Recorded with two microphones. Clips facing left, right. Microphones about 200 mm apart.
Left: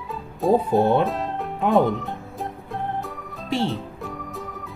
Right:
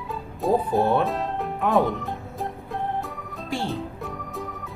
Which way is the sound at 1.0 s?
Centre (ahead or behind).